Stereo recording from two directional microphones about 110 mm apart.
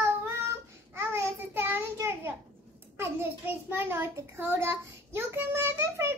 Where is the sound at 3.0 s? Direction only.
20° right (ahead or behind).